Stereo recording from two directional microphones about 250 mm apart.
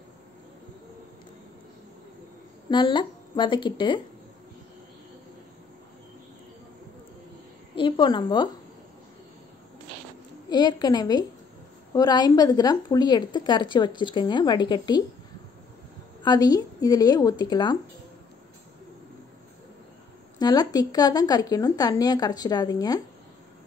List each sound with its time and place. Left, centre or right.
2.7 s speech: centre
7.7 s a woman's voice: centre
10.5 s speech: centre
16.2 s speech: centre
20.3 s speech: centre